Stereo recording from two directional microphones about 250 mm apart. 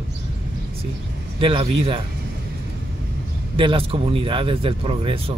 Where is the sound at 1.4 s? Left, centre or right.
Right.